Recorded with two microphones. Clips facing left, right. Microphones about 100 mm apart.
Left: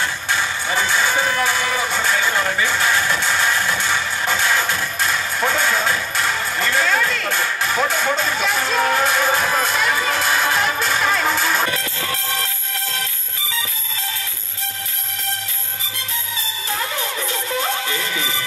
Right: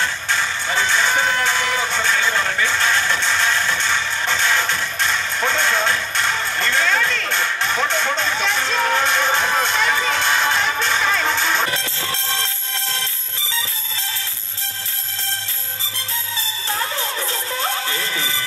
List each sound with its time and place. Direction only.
0.0 s music: 10° left (ahead or behind)
11.7 s music: 25° right (ahead or behind)
16.7 s music: 30° right (ahead or behind)